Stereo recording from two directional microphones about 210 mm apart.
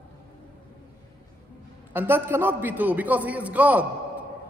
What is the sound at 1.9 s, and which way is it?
A man's voice, 10° right (ahead or behind).